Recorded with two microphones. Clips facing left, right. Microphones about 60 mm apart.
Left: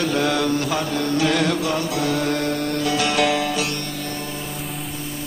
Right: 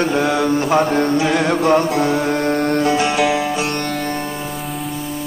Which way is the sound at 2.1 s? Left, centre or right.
Right.